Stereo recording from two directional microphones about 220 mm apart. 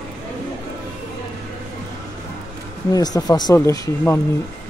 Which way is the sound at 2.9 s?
15° left (ahead or behind).